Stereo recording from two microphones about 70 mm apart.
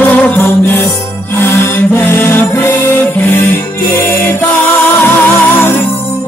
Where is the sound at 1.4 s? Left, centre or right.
Left.